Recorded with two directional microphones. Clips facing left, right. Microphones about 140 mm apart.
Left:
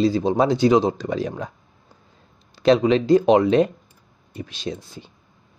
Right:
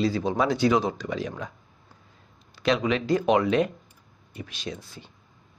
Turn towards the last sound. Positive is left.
turn(degrees=30)  # may be behind; listen again after turning